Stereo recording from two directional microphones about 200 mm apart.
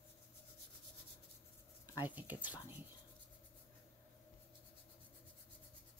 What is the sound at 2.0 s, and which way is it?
Speech, 10° right (ahead or behind).